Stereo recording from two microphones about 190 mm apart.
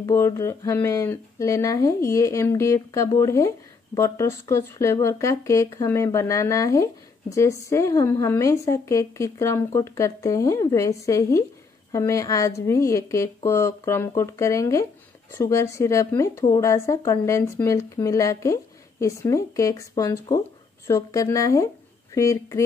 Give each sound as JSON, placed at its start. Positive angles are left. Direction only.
{"t": 0.0, "sound": "speech", "side_deg": 20}